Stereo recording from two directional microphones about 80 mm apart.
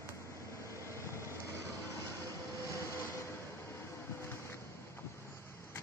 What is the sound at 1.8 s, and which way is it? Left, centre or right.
Vehicle, left.